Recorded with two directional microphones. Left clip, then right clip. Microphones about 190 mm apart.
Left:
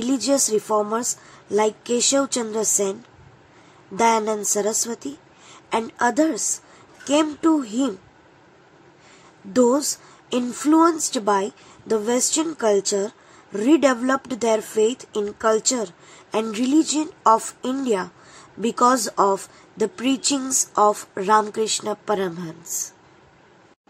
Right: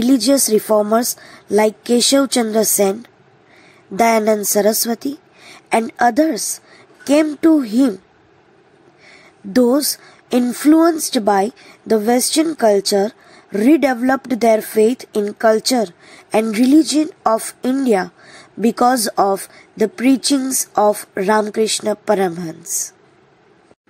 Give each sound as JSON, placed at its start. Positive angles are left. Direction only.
{"t": 0.0, "sound": "a woman's voice", "side_deg": -25}
{"t": 9.5, "sound": "a woman's voice", "side_deg": -25}